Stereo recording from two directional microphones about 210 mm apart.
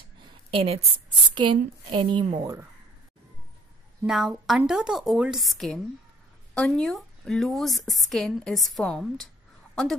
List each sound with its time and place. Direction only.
0.2 s a sound: 25° right (ahead or behind)
1.3 s a woman's voice: 25° right (ahead or behind)
4.0 s a woman's voice: 5° right (ahead or behind)